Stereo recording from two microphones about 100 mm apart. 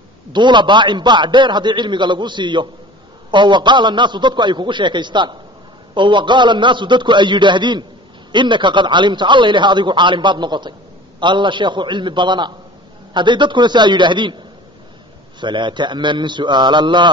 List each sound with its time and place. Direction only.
0.3 s a man's voice: 50° right (ahead or behind)
15.4 s a man's voice: 50° right (ahead or behind)